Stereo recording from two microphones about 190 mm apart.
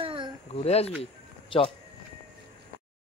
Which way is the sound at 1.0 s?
25° left (ahead or behind).